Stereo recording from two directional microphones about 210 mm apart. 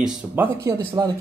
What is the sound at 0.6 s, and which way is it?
Speech, 15° right (ahead or behind).